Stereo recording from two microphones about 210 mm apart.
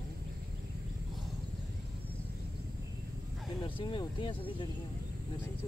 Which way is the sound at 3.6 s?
25° left (ahead or behind).